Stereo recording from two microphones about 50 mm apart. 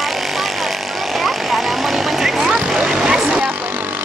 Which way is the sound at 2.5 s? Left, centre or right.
Centre.